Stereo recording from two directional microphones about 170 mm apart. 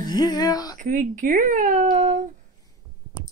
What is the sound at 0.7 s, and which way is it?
Speech, 50° right (ahead or behind).